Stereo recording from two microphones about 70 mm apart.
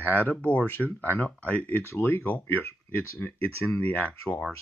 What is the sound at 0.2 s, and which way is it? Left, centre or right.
Speech, left.